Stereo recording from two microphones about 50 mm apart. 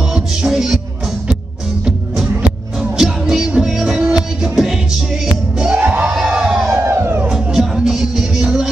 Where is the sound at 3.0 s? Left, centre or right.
Centre.